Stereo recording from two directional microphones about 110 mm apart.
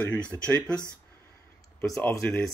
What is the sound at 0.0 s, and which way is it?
Speech, 10° left (ahead or behind).